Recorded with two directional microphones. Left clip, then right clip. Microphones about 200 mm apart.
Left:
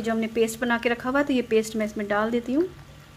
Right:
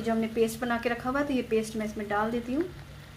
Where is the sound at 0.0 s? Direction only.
50° left (ahead or behind).